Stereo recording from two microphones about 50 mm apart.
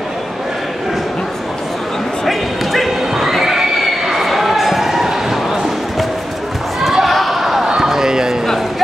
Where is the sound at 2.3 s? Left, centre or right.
Centre.